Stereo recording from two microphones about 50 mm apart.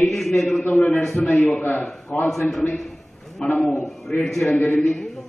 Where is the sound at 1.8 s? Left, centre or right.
Centre.